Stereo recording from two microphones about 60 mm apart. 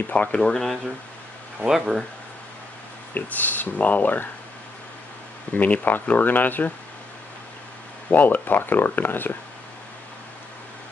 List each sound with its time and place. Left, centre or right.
0.1 s speech: centre
1.7 s speech: centre
3.2 s speech: left
5.5 s speech: left
8.1 s speech: left